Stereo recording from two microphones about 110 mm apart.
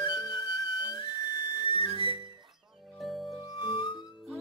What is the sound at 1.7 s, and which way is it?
Music, 55° left (ahead or behind).